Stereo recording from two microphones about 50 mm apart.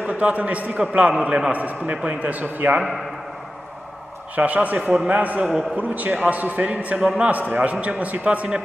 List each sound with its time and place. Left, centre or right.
0.0 s a man's voice: right
4.4 s a man's voice: right